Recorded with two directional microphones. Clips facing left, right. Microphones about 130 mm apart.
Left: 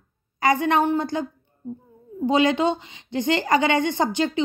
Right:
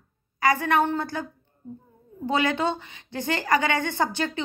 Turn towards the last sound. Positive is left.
turn(degrees=20)  # may be behind; listen again after turning